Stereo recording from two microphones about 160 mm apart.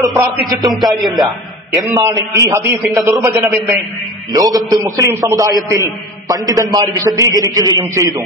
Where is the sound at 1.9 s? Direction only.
15° right (ahead or behind).